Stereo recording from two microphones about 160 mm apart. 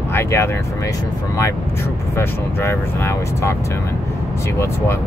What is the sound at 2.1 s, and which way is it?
Speech, 15° left (ahead or behind).